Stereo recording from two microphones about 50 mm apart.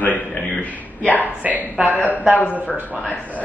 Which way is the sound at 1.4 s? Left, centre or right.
Right.